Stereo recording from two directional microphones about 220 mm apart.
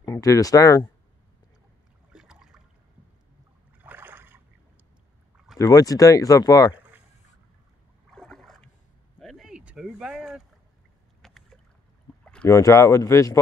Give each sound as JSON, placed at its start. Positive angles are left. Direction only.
{"t": 0.0, "sound": "speech", "side_deg": 15}
{"t": 2.1, "sound": "a sound", "side_deg": -5}
{"t": 3.8, "sound": "boat", "side_deg": -10}
{"t": 5.6, "sound": "speech", "side_deg": 15}
{"t": 8.1, "sound": "boat", "side_deg": 0}
{"t": 9.2, "sound": "a sound", "side_deg": 0}
{"t": 11.2, "sound": "rowboat", "side_deg": 0}
{"t": 12.3, "sound": "speech", "side_deg": 10}